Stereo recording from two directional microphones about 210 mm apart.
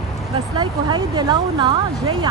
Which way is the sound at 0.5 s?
20° right (ahead or behind).